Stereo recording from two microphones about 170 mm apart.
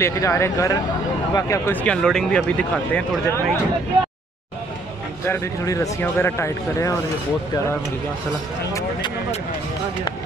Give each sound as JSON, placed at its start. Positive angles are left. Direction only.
{"t": 0.0, "sound": "speech", "side_deg": 20}
{"t": 5.2, "sound": "speech", "side_deg": 15}